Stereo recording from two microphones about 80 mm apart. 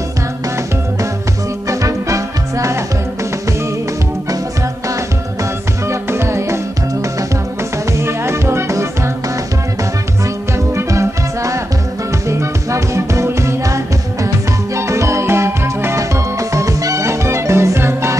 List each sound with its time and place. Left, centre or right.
1.7 s music: right
5.4 s music: right
8.0 s music: right
10.7 s music: right
14.8 s music: right